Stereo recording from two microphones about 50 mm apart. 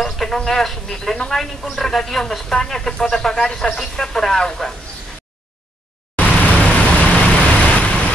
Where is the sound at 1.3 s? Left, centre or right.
Centre.